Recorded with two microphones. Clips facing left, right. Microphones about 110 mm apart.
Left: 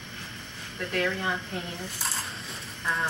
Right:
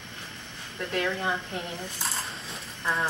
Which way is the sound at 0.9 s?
5° right (ahead or behind).